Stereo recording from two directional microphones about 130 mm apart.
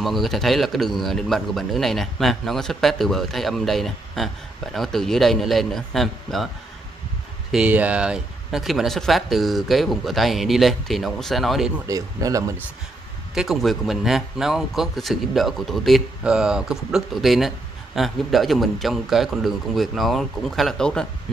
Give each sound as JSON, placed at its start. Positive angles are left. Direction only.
{"t": 0.0, "sound": "speech", "side_deg": 0}
{"t": 7.5, "sound": "speech", "side_deg": -10}
{"t": 11.9, "sound": "speech", "side_deg": -25}
{"t": 13.3, "sound": "speech", "side_deg": 0}